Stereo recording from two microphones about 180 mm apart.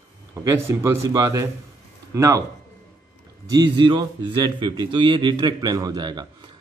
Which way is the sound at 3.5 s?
25° right (ahead or behind).